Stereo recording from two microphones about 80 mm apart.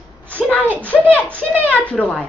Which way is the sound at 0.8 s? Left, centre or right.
Centre.